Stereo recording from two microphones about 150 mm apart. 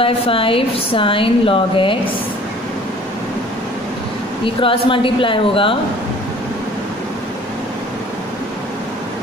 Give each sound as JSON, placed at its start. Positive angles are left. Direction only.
{"t": 0.0, "sound": "speech", "side_deg": 35}
{"t": 4.6, "sound": "speech", "side_deg": 35}